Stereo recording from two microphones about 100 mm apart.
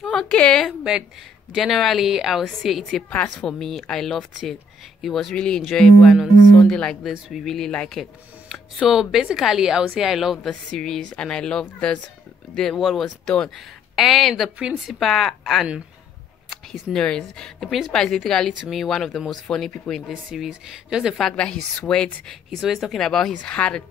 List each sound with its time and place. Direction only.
0.1 s a woman's voice: 10° left (ahead or behind)
3.1 s speech: 15° left (ahead or behind)
3.5 s a woman's voice: 5° left (ahead or behind)
7.7 s speech: 10° left (ahead or behind)
8.0 s a woman's voice: centre (ahead or behind)
16.4 s a sound: 5° right (ahead or behind)
16.9 s a woman's voice: 10° left (ahead or behind)
20.1 s a woman's voice: 5° right (ahead or behind)